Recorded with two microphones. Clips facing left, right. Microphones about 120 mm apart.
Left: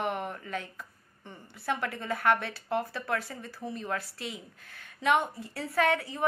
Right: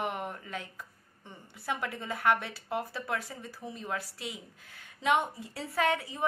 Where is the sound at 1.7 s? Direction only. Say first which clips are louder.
Left 3 dB; 15° right (ahead or behind).